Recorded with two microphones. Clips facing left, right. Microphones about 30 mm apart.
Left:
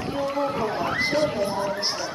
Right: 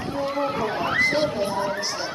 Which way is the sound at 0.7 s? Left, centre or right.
Centre.